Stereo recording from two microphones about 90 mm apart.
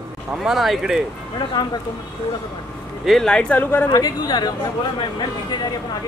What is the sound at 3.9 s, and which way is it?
Speech, 45° left (ahead or behind).